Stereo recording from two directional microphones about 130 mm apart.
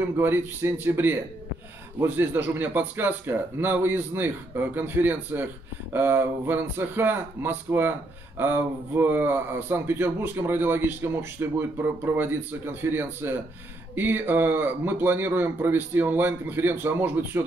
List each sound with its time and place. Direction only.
0.0 s speech: 15° right (ahead or behind)